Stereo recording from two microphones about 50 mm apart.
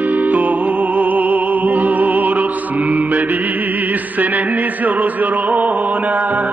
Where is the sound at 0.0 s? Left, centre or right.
Right.